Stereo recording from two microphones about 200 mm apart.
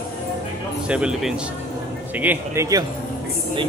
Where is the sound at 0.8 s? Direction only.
5° right (ahead or behind).